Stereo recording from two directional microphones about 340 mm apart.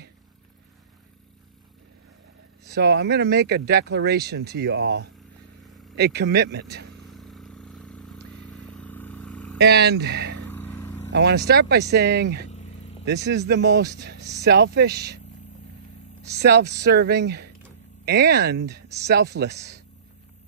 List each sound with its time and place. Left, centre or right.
2.7 s speech: right
7.1 s vehicle: centre
9.6 s speech: right
10.5 s vehicle: centre
11.1 s speech: right
16.3 s speech: right